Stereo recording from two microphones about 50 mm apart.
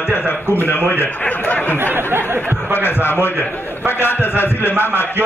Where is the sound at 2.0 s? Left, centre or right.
Right.